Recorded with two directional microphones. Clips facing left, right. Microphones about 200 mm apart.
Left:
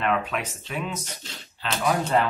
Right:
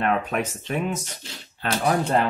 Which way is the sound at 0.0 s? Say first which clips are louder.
Right 2 dB; 45° right (ahead or behind).